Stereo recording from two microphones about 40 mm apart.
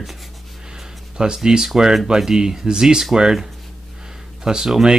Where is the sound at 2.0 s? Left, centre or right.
Centre.